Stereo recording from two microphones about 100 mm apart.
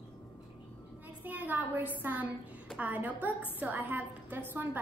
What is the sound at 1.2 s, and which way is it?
A woman's voice, 15° right (ahead or behind).